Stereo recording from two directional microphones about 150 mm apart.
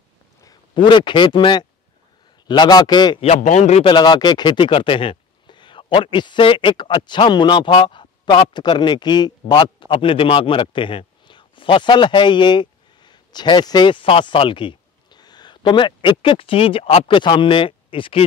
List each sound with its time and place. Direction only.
0.4 s a man's voice: 30° left (ahead or behind)
3.3 s a man's voice: 50° left (ahead or behind)
3.8 s speech: 30° left (ahead or behind)